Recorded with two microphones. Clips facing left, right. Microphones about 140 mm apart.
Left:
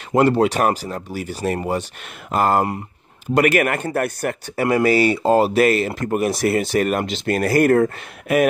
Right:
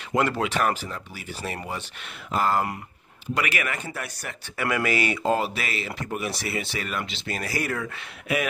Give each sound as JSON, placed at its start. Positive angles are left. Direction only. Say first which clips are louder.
{"t": 0.2, "sound": "speech", "louder": "left 8 dB", "side_deg": 35}
{"t": 4.6, "sound": "speech", "louder": "left 8 dB", "side_deg": 35}